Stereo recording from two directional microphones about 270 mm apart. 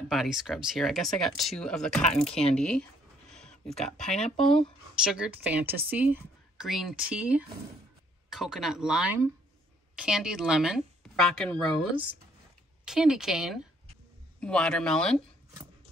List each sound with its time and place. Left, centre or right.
0.1 s speech: centre
2.2 s speech: left
2.5 s speech: centre